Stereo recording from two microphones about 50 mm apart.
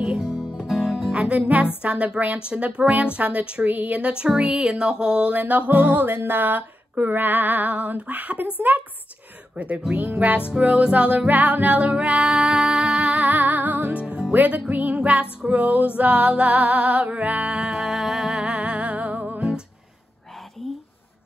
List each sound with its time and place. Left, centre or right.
0.0 s music: centre
1.1 s music: right
5.3 s music: right
9.9 s music: right; by 13.1 s centre
13.1 s music: right
14.0 s music: centre
14.3 s music: right
17.6 s music: centre
18.4 s music: centre
18.7 s music: right